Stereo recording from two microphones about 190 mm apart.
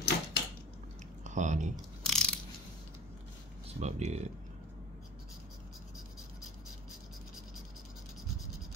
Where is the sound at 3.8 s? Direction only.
35° right (ahead or behind).